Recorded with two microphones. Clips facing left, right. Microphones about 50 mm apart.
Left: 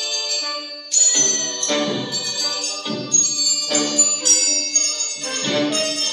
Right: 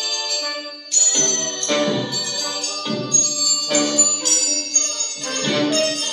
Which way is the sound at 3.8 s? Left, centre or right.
Centre.